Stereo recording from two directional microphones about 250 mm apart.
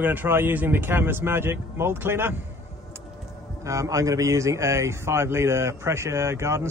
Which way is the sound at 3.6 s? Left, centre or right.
Centre.